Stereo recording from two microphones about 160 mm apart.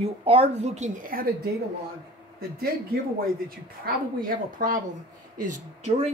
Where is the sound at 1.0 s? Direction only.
65° right (ahead or behind).